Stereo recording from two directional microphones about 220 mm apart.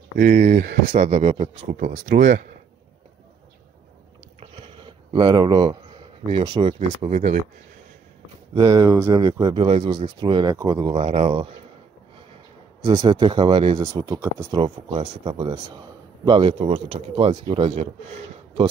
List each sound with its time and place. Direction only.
0.2 s speech: 35° right (ahead or behind)
1.8 s speech: 40° right (ahead or behind)
4.4 s speech: 25° right (ahead or behind)
8.5 s speech: 15° right (ahead or behind)
12.8 s speech: 20° right (ahead or behind)